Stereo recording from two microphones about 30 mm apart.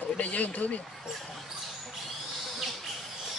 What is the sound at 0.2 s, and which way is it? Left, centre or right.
Speech, left.